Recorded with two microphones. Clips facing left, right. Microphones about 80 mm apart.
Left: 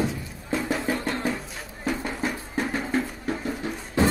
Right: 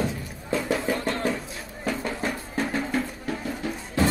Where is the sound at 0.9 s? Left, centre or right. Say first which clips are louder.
Right 1 dB; centre.